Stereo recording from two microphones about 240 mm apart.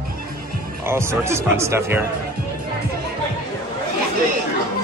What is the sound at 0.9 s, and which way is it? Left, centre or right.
Speech, centre.